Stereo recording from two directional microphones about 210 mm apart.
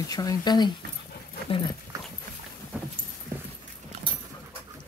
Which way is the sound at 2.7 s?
5° right (ahead or behind).